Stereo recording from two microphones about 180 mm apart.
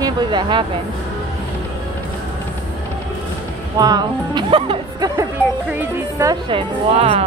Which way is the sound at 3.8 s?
25° right (ahead or behind).